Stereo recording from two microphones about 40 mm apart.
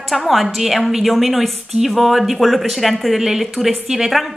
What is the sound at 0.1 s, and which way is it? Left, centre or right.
A woman's voice, centre.